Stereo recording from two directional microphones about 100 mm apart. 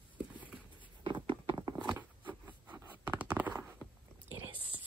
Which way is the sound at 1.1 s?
50° right (ahead or behind).